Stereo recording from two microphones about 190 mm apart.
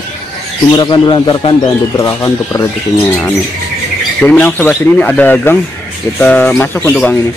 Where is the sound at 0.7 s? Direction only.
25° left (ahead or behind).